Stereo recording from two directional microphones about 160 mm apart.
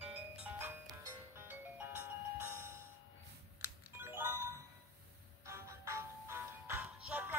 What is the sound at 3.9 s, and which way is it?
Music, 15° right (ahead or behind).